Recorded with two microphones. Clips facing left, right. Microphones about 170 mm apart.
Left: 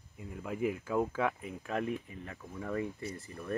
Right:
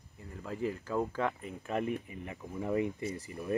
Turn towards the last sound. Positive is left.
turn(degrees=-15)  # may be behind; listen again after turning